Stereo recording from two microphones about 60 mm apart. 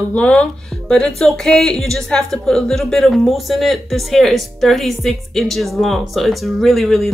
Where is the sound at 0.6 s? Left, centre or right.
Centre.